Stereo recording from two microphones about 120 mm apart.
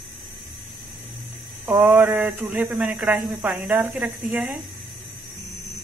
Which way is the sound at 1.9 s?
15° right (ahead or behind).